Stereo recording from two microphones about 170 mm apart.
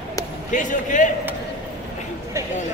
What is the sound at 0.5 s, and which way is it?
Speech, 50° left (ahead or behind).